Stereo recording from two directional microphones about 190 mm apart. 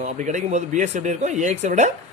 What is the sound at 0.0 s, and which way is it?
Speech, 40° right (ahead or behind).